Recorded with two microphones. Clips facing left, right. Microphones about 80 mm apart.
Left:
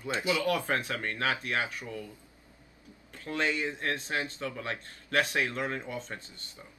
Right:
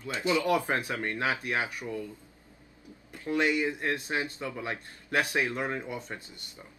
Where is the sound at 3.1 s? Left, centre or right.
Centre.